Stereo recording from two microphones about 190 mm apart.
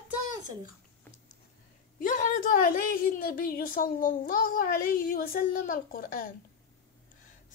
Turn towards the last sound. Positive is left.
turn(degrees=50)  # may be behind; listen again after turning